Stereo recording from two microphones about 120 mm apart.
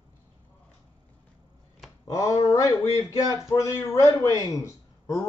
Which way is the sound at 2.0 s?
25° left (ahead or behind).